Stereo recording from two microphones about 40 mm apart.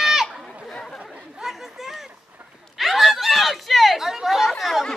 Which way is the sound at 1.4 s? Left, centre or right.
Centre.